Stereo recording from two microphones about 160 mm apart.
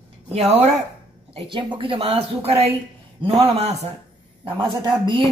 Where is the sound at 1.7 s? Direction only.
35° right (ahead or behind).